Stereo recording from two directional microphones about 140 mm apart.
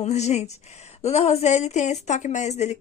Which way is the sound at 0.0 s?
50° left (ahead or behind).